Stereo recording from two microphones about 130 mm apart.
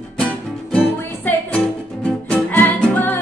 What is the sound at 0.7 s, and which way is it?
Music, 10° left (ahead or behind).